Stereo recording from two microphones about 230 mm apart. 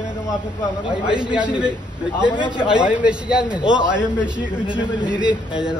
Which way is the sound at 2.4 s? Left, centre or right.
Centre.